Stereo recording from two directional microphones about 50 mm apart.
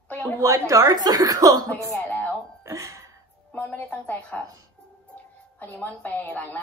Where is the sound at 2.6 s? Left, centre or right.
Right.